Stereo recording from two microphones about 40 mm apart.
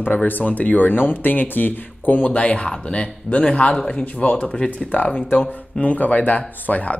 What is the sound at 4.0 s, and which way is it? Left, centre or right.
Speech, left.